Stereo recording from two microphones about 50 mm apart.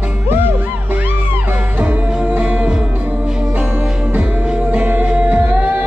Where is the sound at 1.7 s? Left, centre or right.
Right.